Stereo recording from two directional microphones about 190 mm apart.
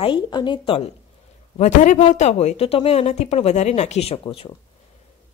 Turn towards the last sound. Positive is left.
turn(degrees=30)  # may be behind; listen again after turning